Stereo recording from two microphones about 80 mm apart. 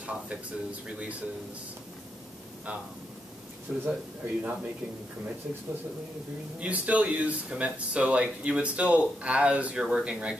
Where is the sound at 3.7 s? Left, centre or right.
Centre.